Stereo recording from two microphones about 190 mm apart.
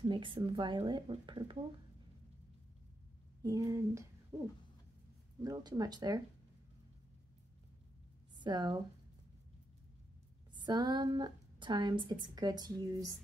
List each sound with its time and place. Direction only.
0.0 s a woman's voice: 25° right (ahead or behind)
3.4 s speech: 15° right (ahead or behind)
5.4 s a woman's voice: 20° right (ahead or behind)
8.4 s speech: 25° right (ahead or behind)
10.5 s a woman's voice: 20° right (ahead or behind)